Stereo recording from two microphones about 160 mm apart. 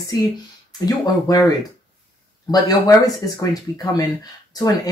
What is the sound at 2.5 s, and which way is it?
Speech, 25° left (ahead or behind).